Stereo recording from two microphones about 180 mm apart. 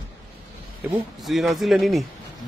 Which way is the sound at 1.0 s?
Centre (ahead or behind).